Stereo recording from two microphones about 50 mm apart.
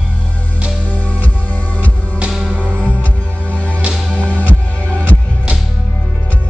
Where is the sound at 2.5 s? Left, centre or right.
Right.